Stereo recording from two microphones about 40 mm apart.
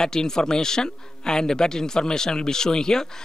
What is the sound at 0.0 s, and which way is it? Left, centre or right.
Speech, centre.